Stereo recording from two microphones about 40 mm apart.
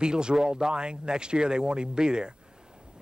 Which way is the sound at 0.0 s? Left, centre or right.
Right.